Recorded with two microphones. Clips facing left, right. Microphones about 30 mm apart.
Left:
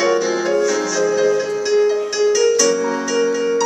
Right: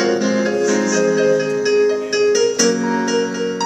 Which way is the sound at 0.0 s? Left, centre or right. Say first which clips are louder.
Even; right.